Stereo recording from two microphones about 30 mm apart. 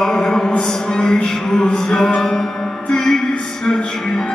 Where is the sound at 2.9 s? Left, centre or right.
Left.